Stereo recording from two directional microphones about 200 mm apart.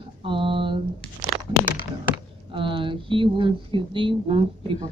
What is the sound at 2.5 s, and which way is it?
Speech, 25° right (ahead or behind).